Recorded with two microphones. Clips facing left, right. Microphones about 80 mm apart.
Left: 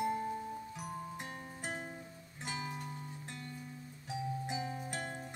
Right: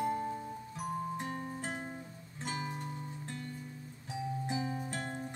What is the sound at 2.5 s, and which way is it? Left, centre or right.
Music, right.